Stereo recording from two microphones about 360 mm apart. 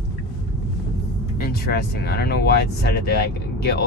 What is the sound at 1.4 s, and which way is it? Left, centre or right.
Speech, left.